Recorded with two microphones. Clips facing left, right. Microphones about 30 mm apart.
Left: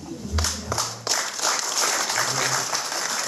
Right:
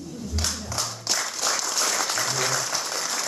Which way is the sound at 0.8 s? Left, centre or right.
Centre.